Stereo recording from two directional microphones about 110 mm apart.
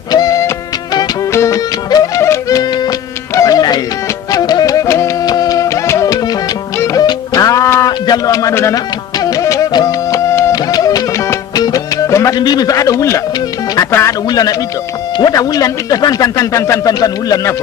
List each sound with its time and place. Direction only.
0.1 s music: 35° left (ahead or behind)
1.9 s music: 40° left (ahead or behind)
3.3 s music: 35° left (ahead or behind)
12.4 s speech: 40° left (ahead or behind)
15.1 s speech: 35° left (ahead or behind)